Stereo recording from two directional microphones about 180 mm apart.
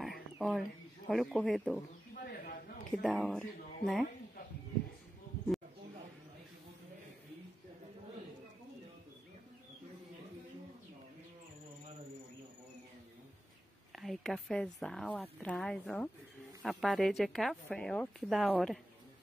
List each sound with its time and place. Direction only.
0.0 s speech: centre (ahead or behind)
2.2 s a sound: 55° left (ahead or behind)
2.9 s a woman's voice: 5° left (ahead or behind)
13.9 s speech: centre (ahead or behind)